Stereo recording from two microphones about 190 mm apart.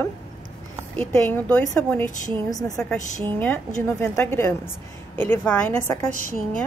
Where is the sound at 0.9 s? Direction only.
5° left (ahead or behind).